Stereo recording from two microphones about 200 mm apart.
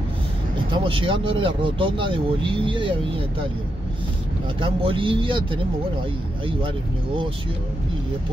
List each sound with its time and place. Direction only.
0.7 s speech: 25° right (ahead or behind)
4.6 s speech: 25° right (ahead or behind)